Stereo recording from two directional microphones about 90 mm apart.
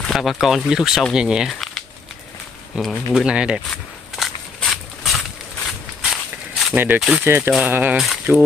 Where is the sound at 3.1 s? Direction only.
10° right (ahead or behind).